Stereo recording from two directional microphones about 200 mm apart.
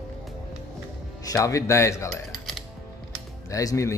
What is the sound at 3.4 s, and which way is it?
Speech, 15° left (ahead or behind).